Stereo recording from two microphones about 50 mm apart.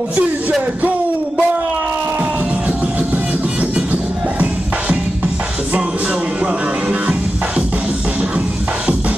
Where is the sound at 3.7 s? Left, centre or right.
Right.